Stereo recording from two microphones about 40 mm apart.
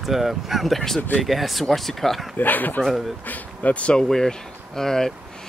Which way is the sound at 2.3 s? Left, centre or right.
Left.